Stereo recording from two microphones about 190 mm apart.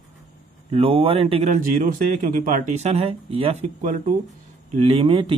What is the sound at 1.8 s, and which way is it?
Speech, 45° right (ahead or behind).